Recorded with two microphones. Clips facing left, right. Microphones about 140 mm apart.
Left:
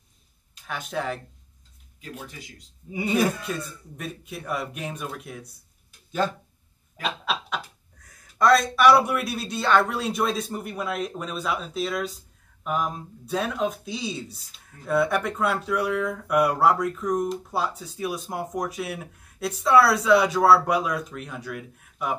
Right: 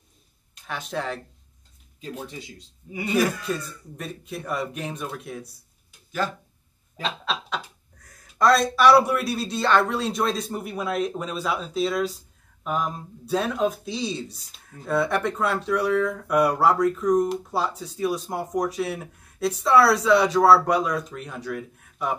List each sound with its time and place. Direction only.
0.7 s speech: centre (ahead or behind)
2.0 s speech: 25° right (ahead or behind)
3.1 s speech: centre (ahead or behind)
7.0 s speech: 5° left (ahead or behind)